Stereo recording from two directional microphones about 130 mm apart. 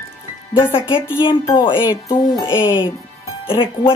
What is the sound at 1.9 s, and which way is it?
Speech, 25° left (ahead or behind).